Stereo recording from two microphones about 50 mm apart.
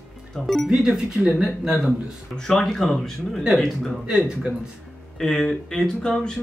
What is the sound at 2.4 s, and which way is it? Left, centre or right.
Speech, centre.